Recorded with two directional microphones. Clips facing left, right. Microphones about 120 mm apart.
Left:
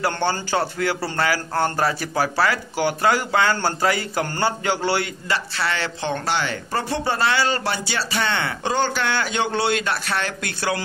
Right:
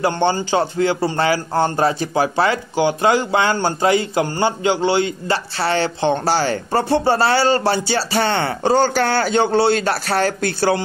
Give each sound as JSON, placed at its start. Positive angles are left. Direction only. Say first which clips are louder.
{"t": 0.0, "sound": "a man's voice", "louder": "right 5 dB", "side_deg": -20}
{"t": 5.3, "sound": "speech", "louder": "right 3 dB", "side_deg": -30}